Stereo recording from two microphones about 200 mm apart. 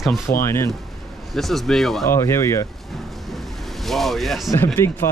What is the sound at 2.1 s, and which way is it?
Speech, 15° left (ahead or behind).